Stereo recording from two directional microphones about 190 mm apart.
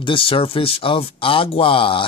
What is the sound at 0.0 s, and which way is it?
Speech, 25° left (ahead or behind).